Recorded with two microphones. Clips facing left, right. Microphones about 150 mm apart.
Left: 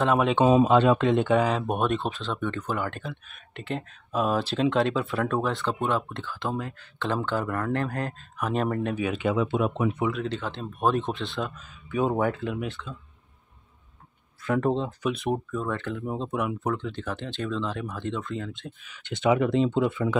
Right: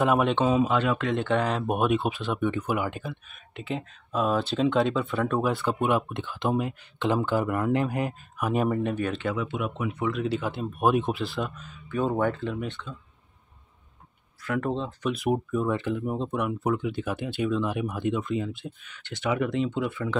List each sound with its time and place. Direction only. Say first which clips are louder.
0.0 s speech: even; 5° right (ahead or behind)
0.5 s speech: left 5 dB; 25° left (ahead or behind)
1.3 s speech: left 2 dB; centre (ahead or behind)
8.9 s speech: left 2 dB; 10° left (ahead or behind)
9.4 s speech: left 5 dB; 30° left (ahead or behind)
10.1 s speech: right 3 dB; 5° right (ahead or behind)
11.9 s speech: left 1 dB; 10° left (ahead or behind)
14.4 s speech: left 3 dB; 25° left (ahead or behind)
15.0 s speech: right 2 dB; centre (ahead or behind)
15.5 s speech: right 4 dB; 10° right (ahead or behind)
16.6 s speech: right 2 dB; 10° right (ahead or behind)
19.0 s speech: left 4 dB; 20° left (ahead or behind)